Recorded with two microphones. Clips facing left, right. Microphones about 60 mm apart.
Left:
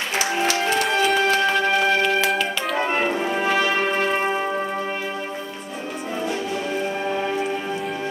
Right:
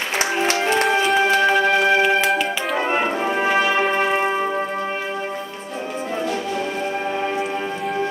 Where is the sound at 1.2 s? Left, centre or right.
Centre.